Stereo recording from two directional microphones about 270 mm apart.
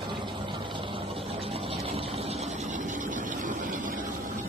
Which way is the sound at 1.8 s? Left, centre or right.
Right.